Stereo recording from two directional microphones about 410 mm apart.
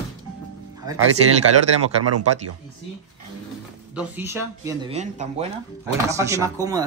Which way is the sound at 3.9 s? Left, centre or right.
Centre.